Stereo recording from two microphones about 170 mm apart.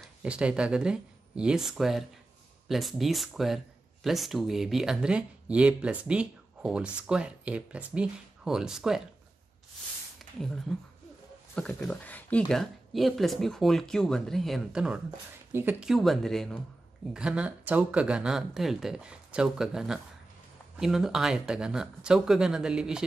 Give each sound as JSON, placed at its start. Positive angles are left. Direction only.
{"t": 0.0, "sound": "speech", "side_deg": -5}
{"t": 10.7, "sound": "speech", "side_deg": 0}